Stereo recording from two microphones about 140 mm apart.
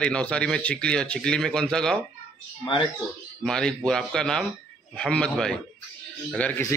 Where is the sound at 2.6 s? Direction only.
35° left (ahead or behind).